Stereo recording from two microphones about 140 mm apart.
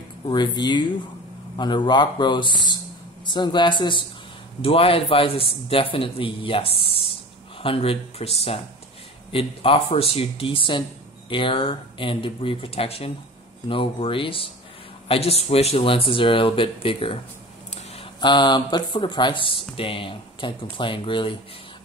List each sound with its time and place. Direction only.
0.3 s a man's voice: 30° left (ahead or behind)
9.3 s a man's voice: 40° left (ahead or behind)
18.2 s a man's voice: 35° left (ahead or behind)